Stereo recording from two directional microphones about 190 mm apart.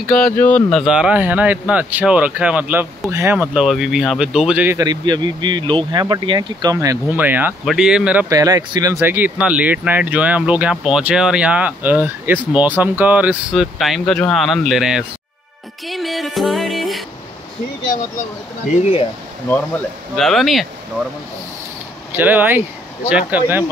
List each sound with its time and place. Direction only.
0.1 s speech: 5° left (ahead or behind)
4.7 s speech: 20° right (ahead or behind); by 8.3 s 5° right (ahead or behind)
8.3 s speech: 20° right (ahead or behind)
15.9 s music: centre (ahead or behind)
20.2 s speech: centre (ahead or behind)
22.1 s speech: 10° right (ahead or behind)